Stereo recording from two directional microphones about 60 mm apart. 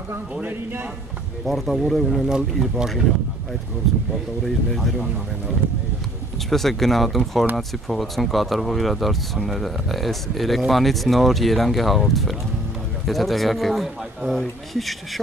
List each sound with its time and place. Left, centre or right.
0.3 s a man's voice: right
1.4 s speech: centre
4.7 s speech: centre
6.5 s speech: centre